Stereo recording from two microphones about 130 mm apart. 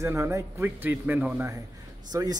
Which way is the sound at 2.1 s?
30° right (ahead or behind).